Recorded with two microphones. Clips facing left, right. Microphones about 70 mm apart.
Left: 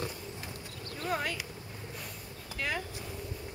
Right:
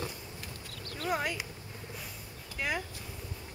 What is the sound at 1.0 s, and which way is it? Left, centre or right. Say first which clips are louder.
Speech: right 1 dB; centre.